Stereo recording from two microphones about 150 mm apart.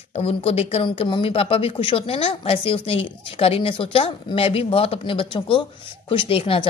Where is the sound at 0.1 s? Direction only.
45° left (ahead or behind).